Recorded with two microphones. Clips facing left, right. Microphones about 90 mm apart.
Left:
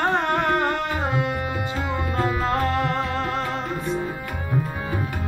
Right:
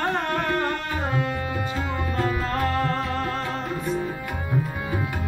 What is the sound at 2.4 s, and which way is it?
Music, 25° left (ahead or behind).